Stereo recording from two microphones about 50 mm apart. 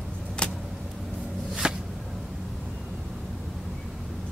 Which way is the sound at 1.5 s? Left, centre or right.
Centre.